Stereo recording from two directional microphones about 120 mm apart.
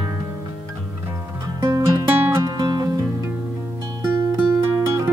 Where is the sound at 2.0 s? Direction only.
20° right (ahead or behind).